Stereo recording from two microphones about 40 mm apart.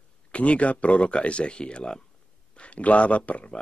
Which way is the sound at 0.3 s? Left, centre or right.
Left.